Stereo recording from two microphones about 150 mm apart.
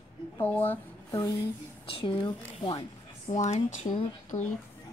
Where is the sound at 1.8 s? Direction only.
35° left (ahead or behind).